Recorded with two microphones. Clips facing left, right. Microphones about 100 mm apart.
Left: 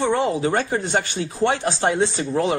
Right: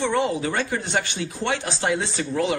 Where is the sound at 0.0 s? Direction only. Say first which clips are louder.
Left 3 dB; 35° left (ahead or behind).